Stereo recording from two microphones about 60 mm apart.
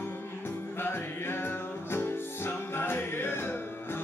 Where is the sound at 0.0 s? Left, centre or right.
Left.